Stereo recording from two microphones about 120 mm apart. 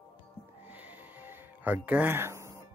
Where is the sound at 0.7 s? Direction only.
15° right (ahead or behind).